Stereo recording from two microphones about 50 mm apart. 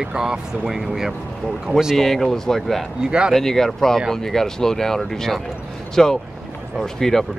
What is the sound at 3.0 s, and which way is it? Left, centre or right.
Speech, centre.